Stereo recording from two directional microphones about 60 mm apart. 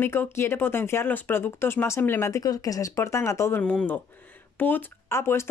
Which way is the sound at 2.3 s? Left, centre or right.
Left.